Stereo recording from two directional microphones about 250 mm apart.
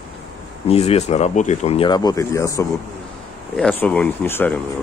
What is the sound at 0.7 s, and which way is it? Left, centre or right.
Speech, left.